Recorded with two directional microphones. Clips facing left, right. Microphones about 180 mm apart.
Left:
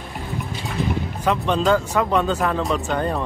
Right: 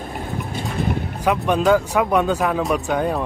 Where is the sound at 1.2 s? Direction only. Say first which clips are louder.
Right 2 dB; 10° right (ahead or behind).